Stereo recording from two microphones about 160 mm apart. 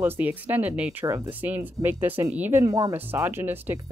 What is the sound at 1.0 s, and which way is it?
Speech, 20° right (ahead or behind).